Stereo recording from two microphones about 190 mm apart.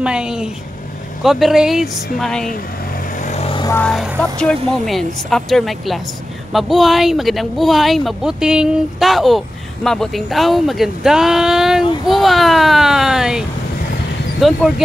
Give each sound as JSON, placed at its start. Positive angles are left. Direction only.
{"t": 0.0, "sound": "speech", "side_deg": -5}
{"t": 3.2, "sound": "vehicle", "side_deg": 35}
{"t": 3.6, "sound": "vehicle", "side_deg": 10}
{"t": 3.9, "sound": "speech", "side_deg": 0}